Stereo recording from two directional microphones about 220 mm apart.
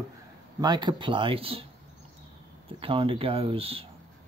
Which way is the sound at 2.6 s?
25° right (ahead or behind).